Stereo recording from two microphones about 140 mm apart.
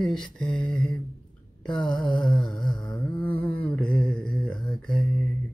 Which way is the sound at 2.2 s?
5° left (ahead or behind).